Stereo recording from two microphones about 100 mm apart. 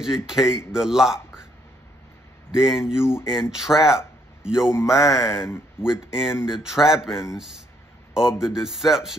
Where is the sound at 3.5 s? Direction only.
5° right (ahead or behind).